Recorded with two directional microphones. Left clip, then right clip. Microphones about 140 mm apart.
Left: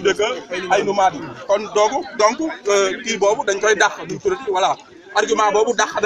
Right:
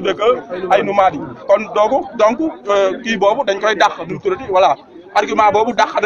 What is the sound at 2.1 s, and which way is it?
A man's voice, 45° right (ahead or behind).